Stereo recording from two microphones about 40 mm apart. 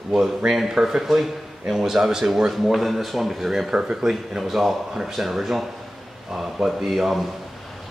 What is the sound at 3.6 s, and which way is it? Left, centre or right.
Speech, right.